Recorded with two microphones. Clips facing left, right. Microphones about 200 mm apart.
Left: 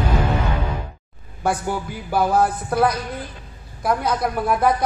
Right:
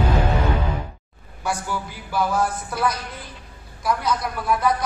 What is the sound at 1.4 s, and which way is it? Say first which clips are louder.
Speech: left 4 dB; 50° left (ahead or behind).